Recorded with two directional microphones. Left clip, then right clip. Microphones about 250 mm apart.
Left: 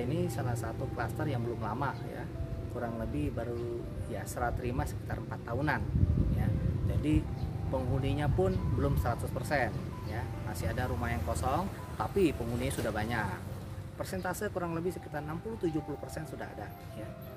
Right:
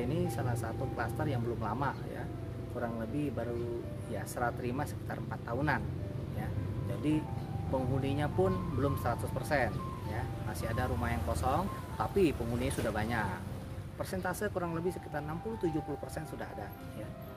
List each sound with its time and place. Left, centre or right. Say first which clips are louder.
0.0 s speech: even; centre
4.1 s speech: even; centre
7.1 s speech: left 1 dB; centre